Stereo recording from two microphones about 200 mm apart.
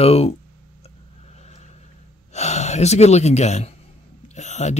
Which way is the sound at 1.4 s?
35° left (ahead or behind).